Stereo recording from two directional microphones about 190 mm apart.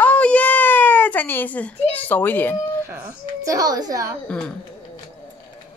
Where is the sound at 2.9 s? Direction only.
15° right (ahead or behind).